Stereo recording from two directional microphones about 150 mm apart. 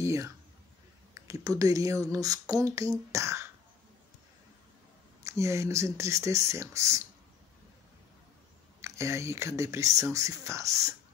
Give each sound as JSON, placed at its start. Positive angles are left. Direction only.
{"t": 0.0, "sound": "speech", "side_deg": -20}
{"t": 5.2, "sound": "speech", "side_deg": -20}
{"t": 8.8, "sound": "speech", "side_deg": -20}